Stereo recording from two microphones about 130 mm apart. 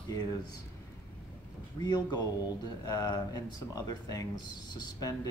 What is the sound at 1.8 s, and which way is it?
Speech, 30° left (ahead or behind).